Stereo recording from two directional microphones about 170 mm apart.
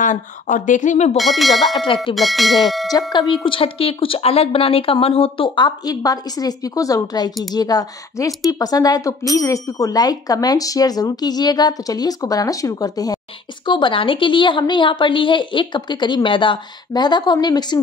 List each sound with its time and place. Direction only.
0.0 s speech: 50° left (ahead or behind)
1.1 s speech: centre (ahead or behind)
2.9 s speech: 25° left (ahead or behind)